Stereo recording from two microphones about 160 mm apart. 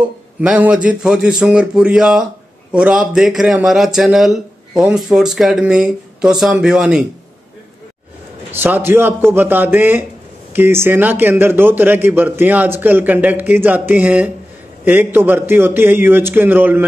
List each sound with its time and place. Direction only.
0.4 s a man's voice: 5° right (ahead or behind)
8.5 s a man's voice: 10° right (ahead or behind)